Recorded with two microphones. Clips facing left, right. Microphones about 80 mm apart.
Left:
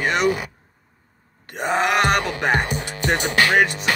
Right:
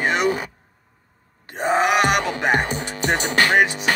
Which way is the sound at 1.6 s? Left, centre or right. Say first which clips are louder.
Right 1 dB; right.